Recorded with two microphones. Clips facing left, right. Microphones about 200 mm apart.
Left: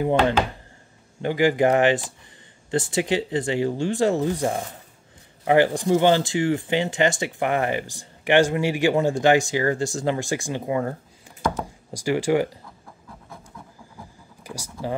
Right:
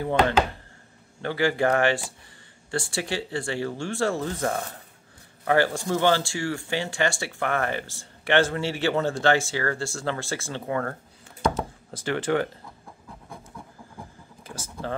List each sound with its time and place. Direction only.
1.2 s speech: 15° left (ahead or behind)
14.4 s speech: 15° left (ahead or behind)